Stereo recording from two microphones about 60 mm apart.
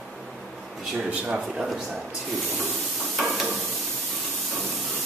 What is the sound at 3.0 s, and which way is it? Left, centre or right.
Stir, centre.